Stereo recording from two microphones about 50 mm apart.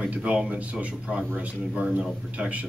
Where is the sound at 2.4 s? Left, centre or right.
Right.